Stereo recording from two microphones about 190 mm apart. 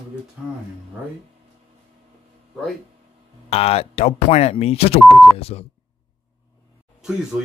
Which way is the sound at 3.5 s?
30° left (ahead or behind).